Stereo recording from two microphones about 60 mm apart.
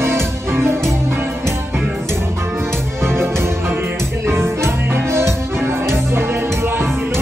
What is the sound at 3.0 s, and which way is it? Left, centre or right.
Music, right.